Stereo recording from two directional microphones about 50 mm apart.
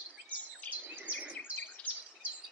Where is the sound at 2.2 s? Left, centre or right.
Right.